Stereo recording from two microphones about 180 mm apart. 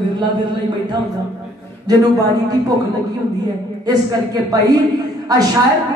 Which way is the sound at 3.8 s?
20° right (ahead or behind).